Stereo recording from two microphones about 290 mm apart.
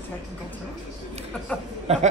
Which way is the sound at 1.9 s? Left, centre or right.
Right.